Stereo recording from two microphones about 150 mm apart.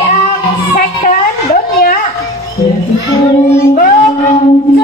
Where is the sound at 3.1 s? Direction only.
20° left (ahead or behind).